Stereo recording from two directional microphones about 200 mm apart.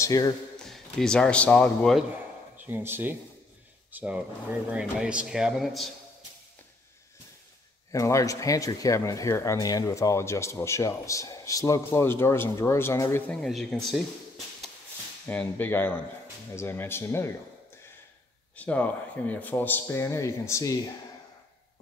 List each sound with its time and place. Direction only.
0.0 s speech: 15° left (ahead or behind)
0.6 s a man's voice: centre (ahead or behind)
2.5 s speech: 10° right (ahead or behind)
7.9 s speech: 15° left (ahead or behind)
13.3 s speech: centre (ahead or behind)
15.2 s speech: 10° left (ahead or behind)
18.6 s speech: 5° left (ahead or behind)